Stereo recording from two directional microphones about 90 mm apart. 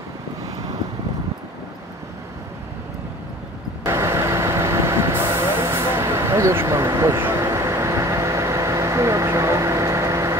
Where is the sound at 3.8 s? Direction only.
30° right (ahead or behind).